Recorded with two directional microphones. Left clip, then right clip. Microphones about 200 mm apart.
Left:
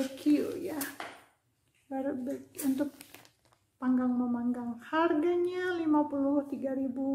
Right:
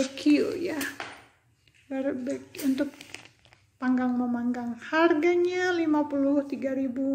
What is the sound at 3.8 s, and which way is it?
A woman's voice, 10° right (ahead or behind).